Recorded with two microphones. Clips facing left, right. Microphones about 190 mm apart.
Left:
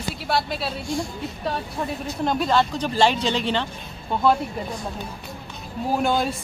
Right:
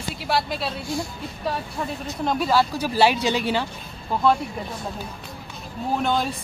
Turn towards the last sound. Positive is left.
turn(degrees=0)  # may be behind; listen again after turning